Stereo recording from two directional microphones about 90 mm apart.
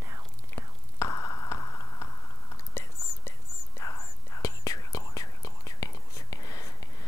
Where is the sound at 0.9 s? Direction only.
35° left (ahead or behind).